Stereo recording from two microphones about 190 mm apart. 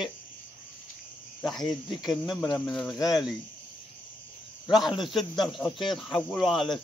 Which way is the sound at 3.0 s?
20° left (ahead or behind).